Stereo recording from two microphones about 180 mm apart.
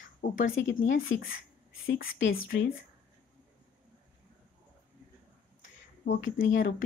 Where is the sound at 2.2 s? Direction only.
75° left (ahead or behind).